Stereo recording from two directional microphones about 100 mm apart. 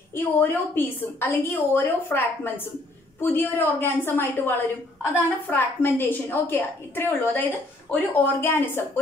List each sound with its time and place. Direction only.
0.1 s a woman's voice: 20° left (ahead or behind)